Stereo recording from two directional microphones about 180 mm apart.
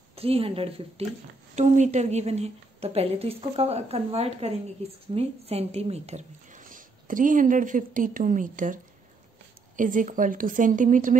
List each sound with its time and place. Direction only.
0.1 s a woman's voice: 30° right (ahead or behind)
9.8 s a woman's voice: 45° right (ahead or behind)